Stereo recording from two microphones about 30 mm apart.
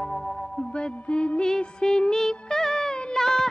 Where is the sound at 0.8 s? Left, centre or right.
Left.